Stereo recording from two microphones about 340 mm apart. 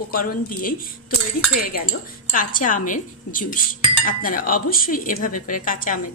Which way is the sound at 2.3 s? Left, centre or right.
Left.